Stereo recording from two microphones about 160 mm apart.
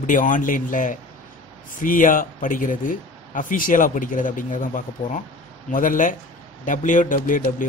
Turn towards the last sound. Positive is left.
turn(degrees=55)  # may be behind; listen again after turning